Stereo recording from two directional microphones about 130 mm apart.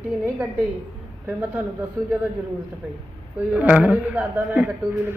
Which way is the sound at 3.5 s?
10° right (ahead or behind).